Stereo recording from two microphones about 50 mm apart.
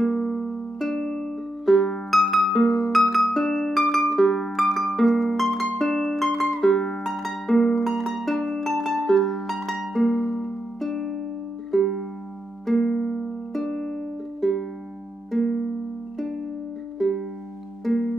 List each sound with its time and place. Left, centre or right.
0.2 s music: centre
0.5 s music: centre
4.5 s harp: centre
7.7 s music: centre
10.4 s music: centre
15.3 s music: centre
17.0 s music: centre